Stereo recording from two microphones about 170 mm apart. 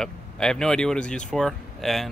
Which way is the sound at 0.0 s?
5° left (ahead or behind).